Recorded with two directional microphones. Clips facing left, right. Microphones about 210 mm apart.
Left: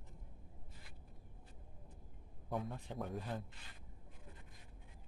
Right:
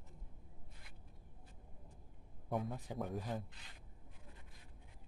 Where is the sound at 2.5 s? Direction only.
5° right (ahead or behind).